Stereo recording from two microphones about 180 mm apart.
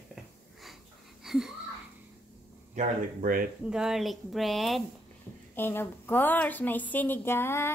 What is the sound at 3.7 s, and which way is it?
Speech, 5° right (ahead or behind).